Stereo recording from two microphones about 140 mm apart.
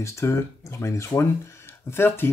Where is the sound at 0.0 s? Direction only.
20° left (ahead or behind).